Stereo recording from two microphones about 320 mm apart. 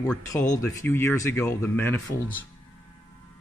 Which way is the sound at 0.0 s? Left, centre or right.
Centre.